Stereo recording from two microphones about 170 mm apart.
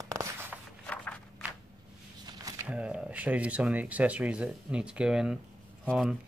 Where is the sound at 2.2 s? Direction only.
25° right (ahead or behind).